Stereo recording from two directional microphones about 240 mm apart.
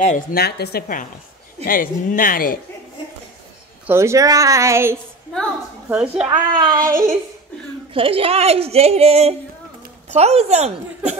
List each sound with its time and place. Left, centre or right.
0.0 s speech: left
3.8 s a woman's voice: centre
6.3 s speech: centre
7.9 s a woman's voice: right